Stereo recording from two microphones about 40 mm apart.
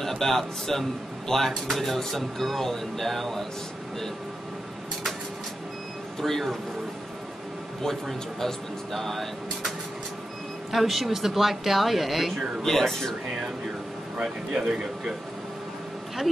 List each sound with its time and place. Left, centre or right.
0.0 s speech: centre
6.2 s speech: centre
7.8 s speech: centre
12.6 s speech: centre
14.2 s speech: right